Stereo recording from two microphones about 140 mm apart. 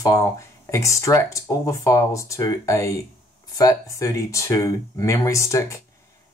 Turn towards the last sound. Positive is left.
turn(degrees=20)  # may be behind; listen again after turning